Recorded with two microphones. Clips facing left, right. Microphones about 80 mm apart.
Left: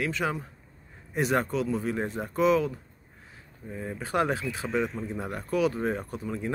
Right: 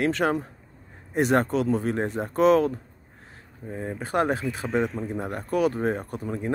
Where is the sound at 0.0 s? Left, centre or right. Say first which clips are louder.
Right 6 dB; right.